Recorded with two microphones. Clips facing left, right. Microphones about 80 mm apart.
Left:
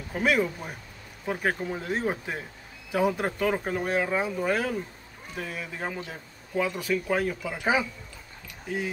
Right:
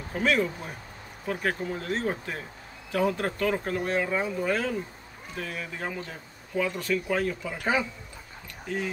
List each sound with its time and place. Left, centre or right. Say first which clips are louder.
0.1 s speech: left 1 dB; centre